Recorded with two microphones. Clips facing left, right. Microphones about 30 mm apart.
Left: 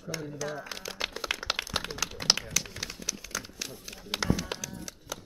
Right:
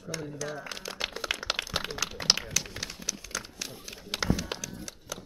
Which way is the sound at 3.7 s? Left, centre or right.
Centre.